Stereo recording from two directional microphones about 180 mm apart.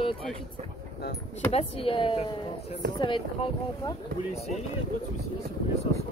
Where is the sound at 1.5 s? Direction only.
30° left (ahead or behind).